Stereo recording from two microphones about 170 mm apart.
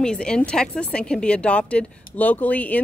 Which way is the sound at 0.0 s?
5° left (ahead or behind).